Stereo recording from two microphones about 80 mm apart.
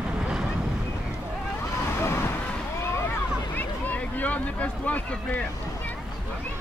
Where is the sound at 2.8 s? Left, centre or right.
Left.